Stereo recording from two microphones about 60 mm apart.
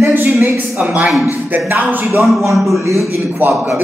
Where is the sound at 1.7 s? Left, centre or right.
Right.